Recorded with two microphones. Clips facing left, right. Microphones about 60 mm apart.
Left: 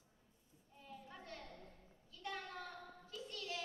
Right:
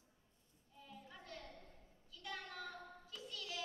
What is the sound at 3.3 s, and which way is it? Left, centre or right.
Music, left.